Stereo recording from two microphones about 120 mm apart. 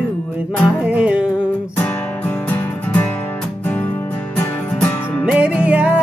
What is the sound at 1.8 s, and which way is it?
Music, 15° left (ahead or behind).